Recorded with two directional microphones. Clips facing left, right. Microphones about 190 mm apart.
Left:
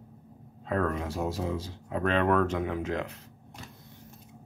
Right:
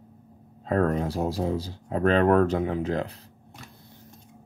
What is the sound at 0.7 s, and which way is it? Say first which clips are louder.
Speech: right 5 dB; 40° right (ahead or behind).